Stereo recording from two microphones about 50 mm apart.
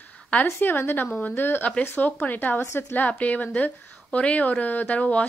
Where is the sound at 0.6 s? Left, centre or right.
Left.